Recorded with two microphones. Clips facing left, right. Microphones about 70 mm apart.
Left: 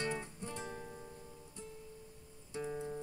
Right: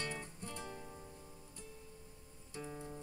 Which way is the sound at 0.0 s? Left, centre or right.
Left.